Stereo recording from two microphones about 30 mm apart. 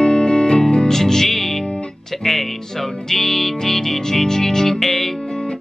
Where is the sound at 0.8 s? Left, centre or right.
Centre.